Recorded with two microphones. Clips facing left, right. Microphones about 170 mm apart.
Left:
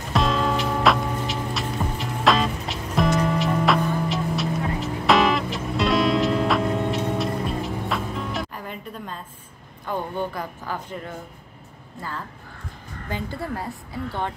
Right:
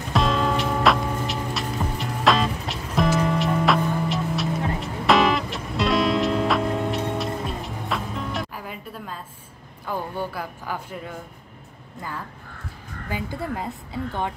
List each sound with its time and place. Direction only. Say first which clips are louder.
0.1 s music: even; centre (ahead or behind)
9.8 s speech: left 1 dB; 5° right (ahead or behind)
13.1 s speech: even; 15° right (ahead or behind)